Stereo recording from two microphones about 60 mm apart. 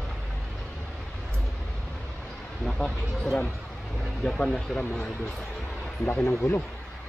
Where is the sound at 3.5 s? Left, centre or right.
Centre.